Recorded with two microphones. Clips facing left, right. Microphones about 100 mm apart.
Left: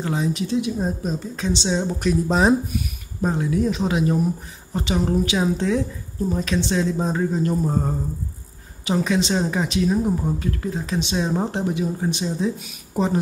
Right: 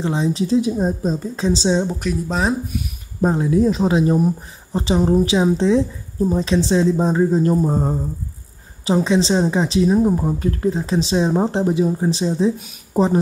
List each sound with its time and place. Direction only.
0.0 s a woman's voice: 25° right (ahead or behind)
1.8 s speech: 10° right (ahead or behind)
2.2 s speech: 10° left (ahead or behind)
3.2 s a woman's voice: 30° right (ahead or behind)
7.6 s a woman's voice: 25° right (ahead or behind)